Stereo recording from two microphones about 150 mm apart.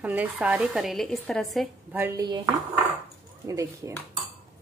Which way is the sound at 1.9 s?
15° right (ahead or behind).